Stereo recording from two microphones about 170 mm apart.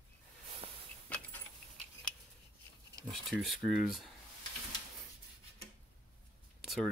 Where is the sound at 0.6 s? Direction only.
35° right (ahead or behind).